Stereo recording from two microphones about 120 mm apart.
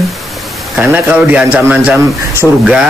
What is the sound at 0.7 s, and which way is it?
Speech, 15° right (ahead or behind).